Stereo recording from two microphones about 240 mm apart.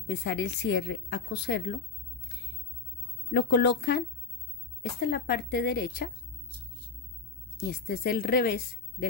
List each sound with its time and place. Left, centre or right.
0.0 s a woman's voice: left
3.3 s a woman's voice: left
5.0 s speech: left
7.7 s speech: left